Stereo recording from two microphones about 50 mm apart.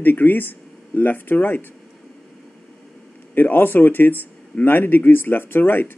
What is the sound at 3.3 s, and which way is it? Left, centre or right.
Speech, left.